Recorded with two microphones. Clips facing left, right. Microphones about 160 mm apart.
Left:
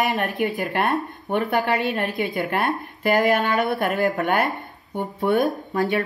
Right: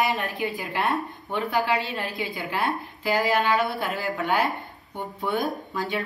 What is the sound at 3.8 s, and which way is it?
Speech, 70° left (ahead or behind).